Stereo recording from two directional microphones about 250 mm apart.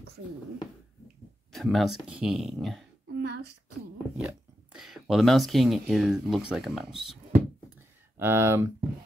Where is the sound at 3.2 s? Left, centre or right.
Right.